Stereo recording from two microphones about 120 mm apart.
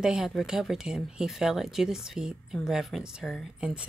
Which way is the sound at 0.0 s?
5° right (ahead or behind).